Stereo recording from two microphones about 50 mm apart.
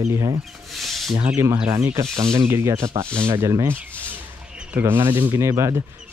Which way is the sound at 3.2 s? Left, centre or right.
Right.